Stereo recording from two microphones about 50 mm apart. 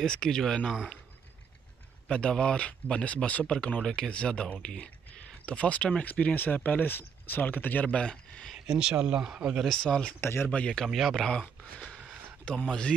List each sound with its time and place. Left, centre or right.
0.0 s speech: centre
2.0 s speech: left
3.4 s speech: centre
8.6 s speech: centre
9.7 s speech: centre
10.2 s speech: left
10.9 s speech: centre
12.6 s speech: centre